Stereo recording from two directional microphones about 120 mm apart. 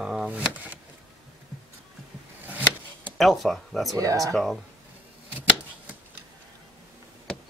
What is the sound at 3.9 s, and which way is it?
Speech, 30° right (ahead or behind).